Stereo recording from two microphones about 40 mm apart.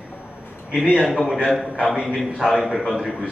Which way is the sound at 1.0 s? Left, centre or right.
Centre.